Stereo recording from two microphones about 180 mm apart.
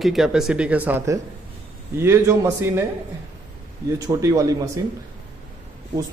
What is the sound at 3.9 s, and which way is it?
Speech, 20° right (ahead or behind).